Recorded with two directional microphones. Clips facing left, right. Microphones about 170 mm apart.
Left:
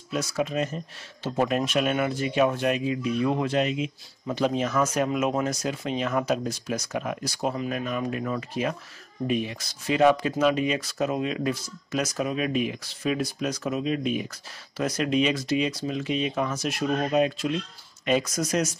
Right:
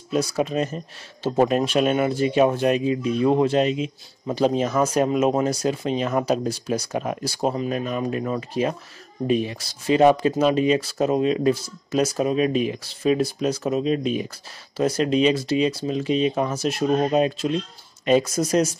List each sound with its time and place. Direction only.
0.1 s speech: 35° right (ahead or behind)